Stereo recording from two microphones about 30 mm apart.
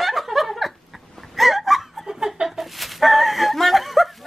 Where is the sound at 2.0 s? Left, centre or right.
Centre.